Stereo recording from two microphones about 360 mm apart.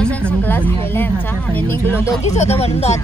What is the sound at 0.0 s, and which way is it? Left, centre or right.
Speech, centre.